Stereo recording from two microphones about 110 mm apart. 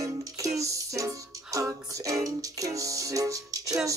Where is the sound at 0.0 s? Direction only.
30° right (ahead or behind).